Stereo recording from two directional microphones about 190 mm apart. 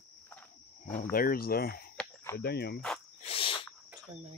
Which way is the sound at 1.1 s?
50° left (ahead or behind).